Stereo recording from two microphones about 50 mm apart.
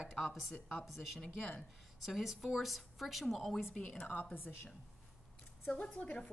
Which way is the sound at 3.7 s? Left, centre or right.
Left.